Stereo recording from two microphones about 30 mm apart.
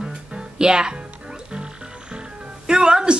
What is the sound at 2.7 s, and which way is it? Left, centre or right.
Music, right.